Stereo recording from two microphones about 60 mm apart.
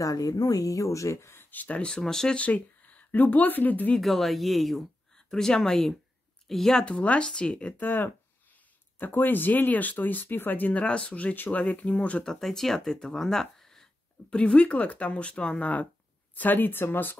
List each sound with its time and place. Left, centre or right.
0.0 s speech: left
1.3 s speech: left
1.9 s speech: centre
2.4 s speech: left
4.0 s speech: centre
7.8 s speech: left
12.3 s speech: centre
14.3 s speech: centre; by 17.2 s left